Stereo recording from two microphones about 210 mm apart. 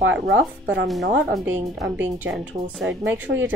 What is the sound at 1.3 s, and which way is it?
A woman's voice, 5° right (ahead or behind).